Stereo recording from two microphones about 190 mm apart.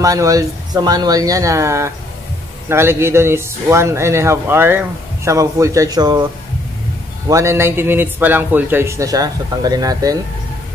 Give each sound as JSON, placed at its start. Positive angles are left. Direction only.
{"t": 0.0, "sound": "a man's voice", "side_deg": -20}
{"t": 7.2, "sound": "a man's voice", "side_deg": -15}